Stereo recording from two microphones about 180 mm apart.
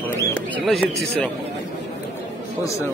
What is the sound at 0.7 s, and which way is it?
Speech, centre (ahead or behind).